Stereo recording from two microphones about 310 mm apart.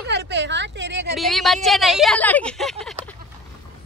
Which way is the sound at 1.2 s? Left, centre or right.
Centre.